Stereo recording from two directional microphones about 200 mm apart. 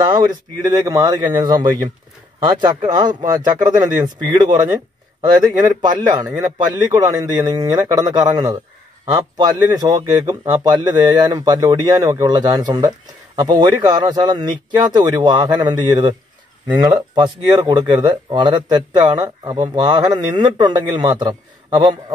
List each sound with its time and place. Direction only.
0.0 s speech: 20° right (ahead or behind)
6.2 s speech: 10° right (ahead or behind)
6.8 s speech: 20° right (ahead or behind)